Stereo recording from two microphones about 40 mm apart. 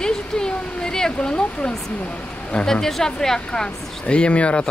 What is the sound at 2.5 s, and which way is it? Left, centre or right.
Speech, centre.